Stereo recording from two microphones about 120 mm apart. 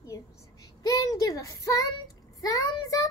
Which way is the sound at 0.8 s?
30° left (ahead or behind).